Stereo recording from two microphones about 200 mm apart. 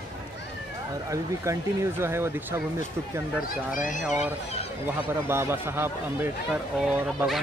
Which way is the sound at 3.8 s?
40° left (ahead or behind).